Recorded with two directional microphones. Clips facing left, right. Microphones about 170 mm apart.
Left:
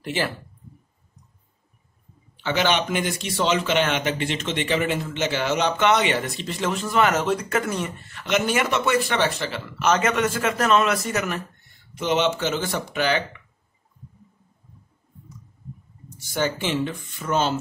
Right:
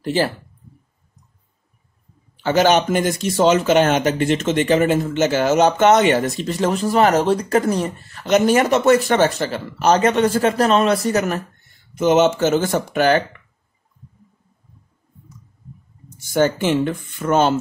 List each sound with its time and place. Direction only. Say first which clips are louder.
0.0 s speech: right 7 dB; 35° right (ahead or behind)
2.4 s speech: right 7 dB; 45° right (ahead or behind)
16.2 s speech: right 8 dB; 50° right (ahead or behind)